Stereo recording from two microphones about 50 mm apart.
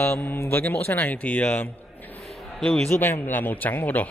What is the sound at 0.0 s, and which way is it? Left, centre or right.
A man's voice, left.